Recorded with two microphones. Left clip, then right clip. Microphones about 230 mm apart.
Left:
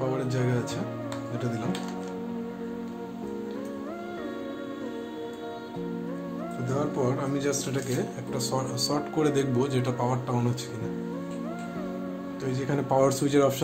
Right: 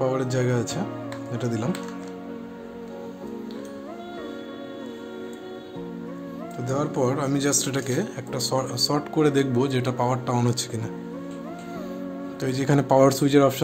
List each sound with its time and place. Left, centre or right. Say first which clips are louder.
0.0 s speech: right 5 dB; right
6.7 s speech: right 4 dB; right
12.4 s speech: right 6 dB; right